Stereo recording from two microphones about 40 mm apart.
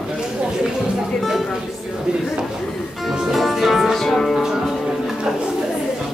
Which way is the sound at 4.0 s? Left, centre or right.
Centre.